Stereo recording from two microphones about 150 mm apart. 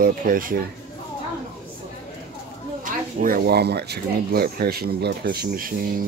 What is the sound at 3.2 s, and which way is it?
Speech, 80° right.